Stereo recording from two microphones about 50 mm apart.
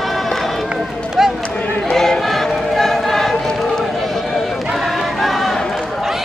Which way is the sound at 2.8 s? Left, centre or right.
Centre.